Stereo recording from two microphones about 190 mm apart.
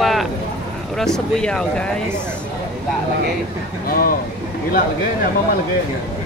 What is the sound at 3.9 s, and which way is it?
Speech, 50° left (ahead or behind).